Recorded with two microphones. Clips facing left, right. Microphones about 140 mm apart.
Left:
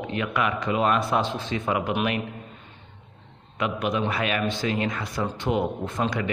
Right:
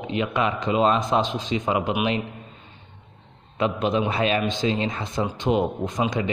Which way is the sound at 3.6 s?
25° right (ahead or behind).